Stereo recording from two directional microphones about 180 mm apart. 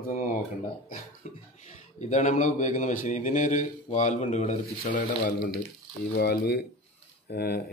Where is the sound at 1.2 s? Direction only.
40° left (ahead or behind).